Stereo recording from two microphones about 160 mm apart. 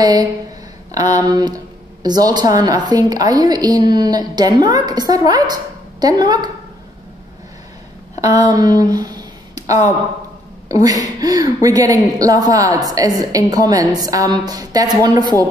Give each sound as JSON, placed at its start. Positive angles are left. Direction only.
{"t": 0.0, "sound": "a woman's voice", "side_deg": -25}
{"t": 8.2, "sound": "a woman's voice", "side_deg": -25}